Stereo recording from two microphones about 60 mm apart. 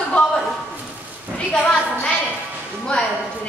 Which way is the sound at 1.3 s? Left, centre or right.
Centre.